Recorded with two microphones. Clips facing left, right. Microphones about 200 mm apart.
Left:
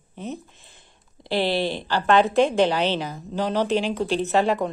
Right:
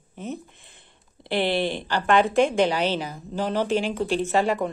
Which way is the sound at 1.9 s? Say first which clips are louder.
Left 2 dB; 50° right (ahead or behind).